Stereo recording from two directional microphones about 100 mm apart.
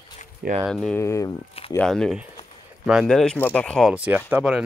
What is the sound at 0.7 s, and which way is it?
Speech, 5° left (ahead or behind).